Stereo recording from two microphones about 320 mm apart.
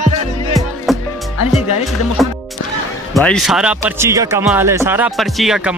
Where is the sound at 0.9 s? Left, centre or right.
Centre.